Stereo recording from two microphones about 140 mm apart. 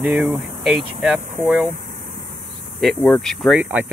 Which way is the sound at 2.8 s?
Centre (ahead or behind).